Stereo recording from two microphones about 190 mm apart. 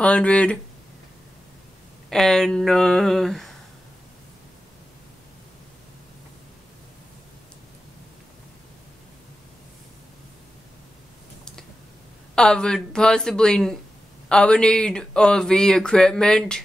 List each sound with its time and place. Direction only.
0.0 s speech: 5° left (ahead or behind)
2.0 s speech: 5° left (ahead or behind)
12.4 s speech: 5° left (ahead or behind)